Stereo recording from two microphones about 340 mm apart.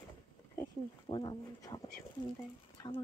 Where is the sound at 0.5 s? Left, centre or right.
Centre.